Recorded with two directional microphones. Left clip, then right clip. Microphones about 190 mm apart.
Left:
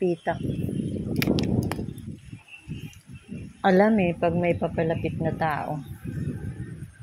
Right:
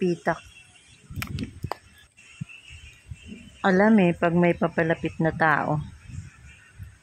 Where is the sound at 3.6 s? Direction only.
Centre (ahead or behind).